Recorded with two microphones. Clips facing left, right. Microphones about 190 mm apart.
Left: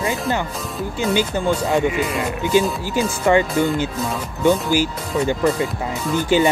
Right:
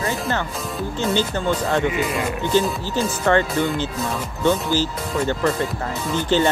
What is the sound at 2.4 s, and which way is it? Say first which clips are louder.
Speech: left 3 dB; 10° left (ahead or behind).